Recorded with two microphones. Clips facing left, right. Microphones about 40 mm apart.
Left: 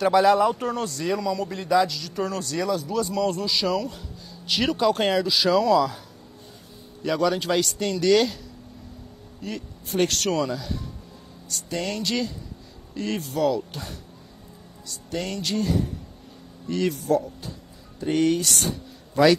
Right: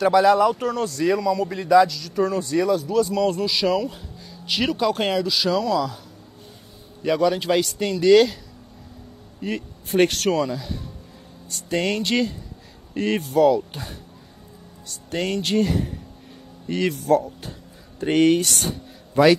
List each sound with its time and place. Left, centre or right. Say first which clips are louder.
0.0 s speech: right 2 dB; centre
2.4 s speech: right 6 dB; right
2.7 s speech: right 5 dB; centre
3.7 s a man's voice: right 3 dB; centre
4.5 s a man's voice: even; centre
9.4 s speech: right 6 dB; centre
10.1 s speech: right 3 dB; centre
11.4 s speech: right 5 dB; right
13.3 s a man's voice: right 7 dB; centre
14.9 s speech: right 4 dB; right
16.6 s speech: right 1 dB; right
17.0 s speech: right 4 dB; right